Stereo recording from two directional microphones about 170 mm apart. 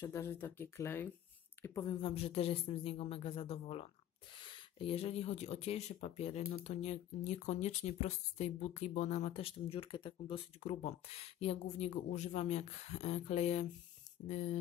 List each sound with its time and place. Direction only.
0.0 s speech: 15° left (ahead or behind); by 14.6 s 40° left (ahead or behind)